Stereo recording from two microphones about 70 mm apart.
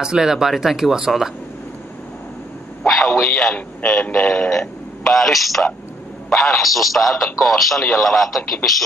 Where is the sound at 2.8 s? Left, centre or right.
Centre.